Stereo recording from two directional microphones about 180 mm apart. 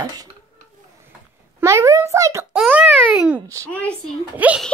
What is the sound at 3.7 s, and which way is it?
Speech, 10° left (ahead or behind).